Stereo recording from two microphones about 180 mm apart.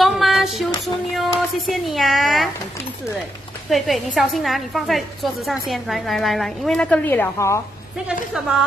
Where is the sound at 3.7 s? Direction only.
Centre (ahead or behind); by 7.6 s 15° left (ahead or behind).